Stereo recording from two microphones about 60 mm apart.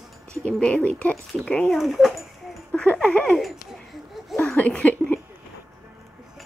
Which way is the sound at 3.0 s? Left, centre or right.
Centre.